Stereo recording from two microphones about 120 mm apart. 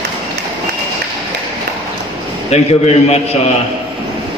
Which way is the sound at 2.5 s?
60° left (ahead or behind).